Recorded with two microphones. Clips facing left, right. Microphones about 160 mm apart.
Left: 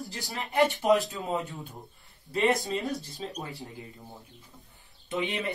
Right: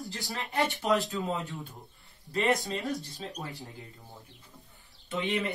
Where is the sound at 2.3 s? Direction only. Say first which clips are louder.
Left 2 dB; centre (ahead or behind).